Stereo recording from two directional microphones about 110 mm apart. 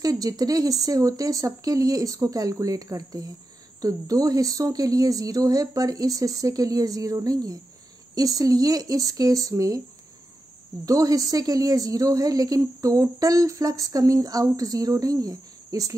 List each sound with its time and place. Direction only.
0.0 s a woman's voice: 35° right (ahead or behind)
10.9 s a woman's voice: 30° right (ahead or behind)